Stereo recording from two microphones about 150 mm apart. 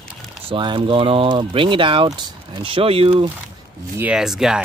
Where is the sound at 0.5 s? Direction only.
35° right (ahead or behind).